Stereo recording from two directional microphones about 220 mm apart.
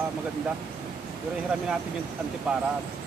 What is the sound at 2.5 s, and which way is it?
Speech, 5° right (ahead or behind).